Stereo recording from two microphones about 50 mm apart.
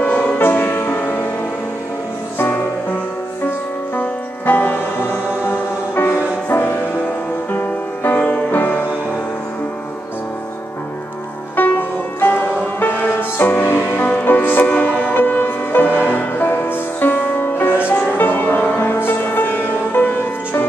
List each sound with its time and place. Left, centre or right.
0.0 s music: left
0.4 s music: left
3.9 s music: left
5.1 s music: left
11.6 s music: left
14.7 s music: left